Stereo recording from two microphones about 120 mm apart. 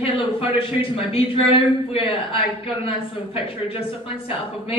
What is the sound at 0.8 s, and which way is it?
A woman's voice, 50° left (ahead or behind).